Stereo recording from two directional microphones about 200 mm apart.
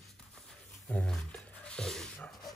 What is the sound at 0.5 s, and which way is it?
Dog, 5° left (ahead or behind).